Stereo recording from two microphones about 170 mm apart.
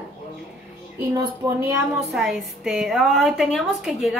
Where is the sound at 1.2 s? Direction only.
20° right (ahead or behind).